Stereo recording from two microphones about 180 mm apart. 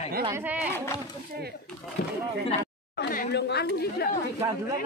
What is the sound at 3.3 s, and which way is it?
A woman's voice, 65° left (ahead or behind).